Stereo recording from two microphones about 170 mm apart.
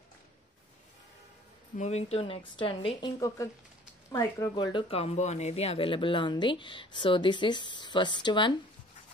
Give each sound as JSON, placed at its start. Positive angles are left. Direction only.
{"t": 1.8, "sound": "speech", "side_deg": 40}
{"t": 3.2, "sound": "speech", "side_deg": 20}
{"t": 4.7, "sound": "speech", "side_deg": 35}